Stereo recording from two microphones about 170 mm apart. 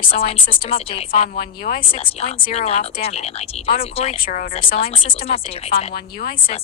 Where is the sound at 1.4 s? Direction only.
55° left (ahead or behind).